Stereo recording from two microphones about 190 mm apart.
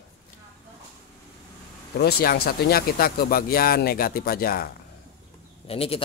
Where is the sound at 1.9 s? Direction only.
55° left (ahead or behind).